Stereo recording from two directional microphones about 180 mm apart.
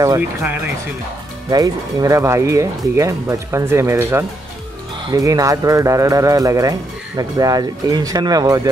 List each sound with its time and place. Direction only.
0.0 s speech: 15° right (ahead or behind)